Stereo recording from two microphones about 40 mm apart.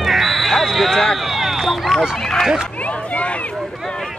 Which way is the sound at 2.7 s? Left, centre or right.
Left.